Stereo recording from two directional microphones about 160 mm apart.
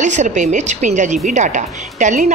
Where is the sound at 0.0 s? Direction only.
50° right (ahead or behind).